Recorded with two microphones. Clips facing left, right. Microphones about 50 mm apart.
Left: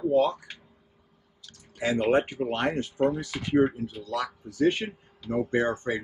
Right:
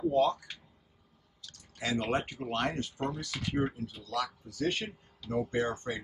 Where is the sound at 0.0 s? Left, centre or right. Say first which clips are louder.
Left 4 dB; centre.